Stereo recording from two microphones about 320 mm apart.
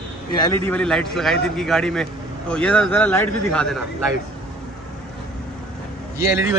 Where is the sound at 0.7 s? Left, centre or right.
Centre.